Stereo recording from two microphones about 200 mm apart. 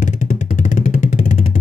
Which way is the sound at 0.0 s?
40° left (ahead or behind).